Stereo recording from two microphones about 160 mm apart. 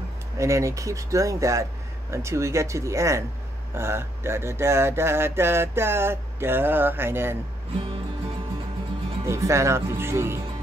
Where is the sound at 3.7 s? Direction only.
15° right (ahead or behind).